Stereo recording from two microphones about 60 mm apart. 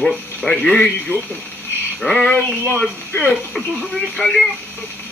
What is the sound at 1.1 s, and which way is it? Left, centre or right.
Speech, left.